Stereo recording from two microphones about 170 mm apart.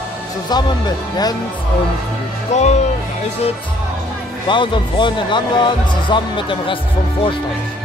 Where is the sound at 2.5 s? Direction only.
40° left (ahead or behind).